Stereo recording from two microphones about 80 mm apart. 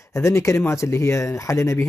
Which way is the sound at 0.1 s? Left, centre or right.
Left.